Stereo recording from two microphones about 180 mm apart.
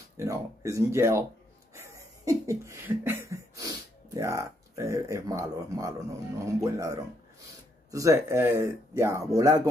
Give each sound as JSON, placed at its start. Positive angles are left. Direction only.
{"t": 0.2, "sound": "speech", "side_deg": -15}
{"t": 1.8, "sound": "a sound", "side_deg": -15}
{"t": 7.9, "sound": "speech", "side_deg": -15}